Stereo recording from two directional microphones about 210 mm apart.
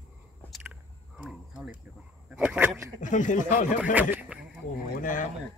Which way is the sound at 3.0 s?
35° left (ahead or behind).